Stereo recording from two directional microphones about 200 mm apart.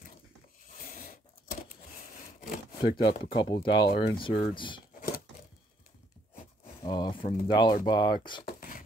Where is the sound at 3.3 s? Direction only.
25° left (ahead or behind).